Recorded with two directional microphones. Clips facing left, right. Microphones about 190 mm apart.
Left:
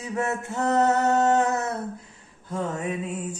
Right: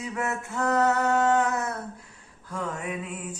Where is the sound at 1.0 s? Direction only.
40° left (ahead or behind).